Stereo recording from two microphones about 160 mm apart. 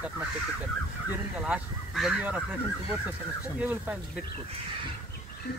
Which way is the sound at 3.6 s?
10° right (ahead or behind).